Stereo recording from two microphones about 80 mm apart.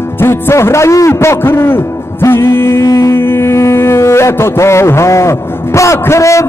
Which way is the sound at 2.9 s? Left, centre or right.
Left.